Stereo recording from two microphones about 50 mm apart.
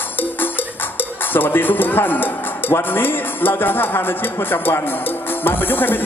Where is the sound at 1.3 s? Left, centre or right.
Left.